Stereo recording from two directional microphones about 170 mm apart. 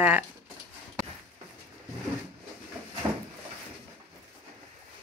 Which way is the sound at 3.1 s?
20° right (ahead or behind).